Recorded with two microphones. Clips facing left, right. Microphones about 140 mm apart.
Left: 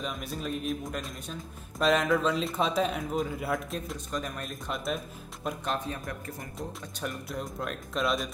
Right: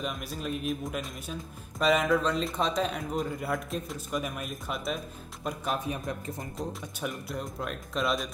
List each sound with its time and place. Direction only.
0.0 s speech: centre (ahead or behind)
5.9 s speech: 20° right (ahead or behind)
7.0 s speech: centre (ahead or behind)